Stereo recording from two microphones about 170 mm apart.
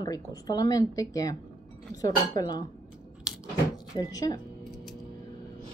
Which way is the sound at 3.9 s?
20° left (ahead or behind).